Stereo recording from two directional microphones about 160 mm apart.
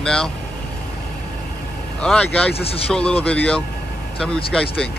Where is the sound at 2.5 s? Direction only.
40° left (ahead or behind).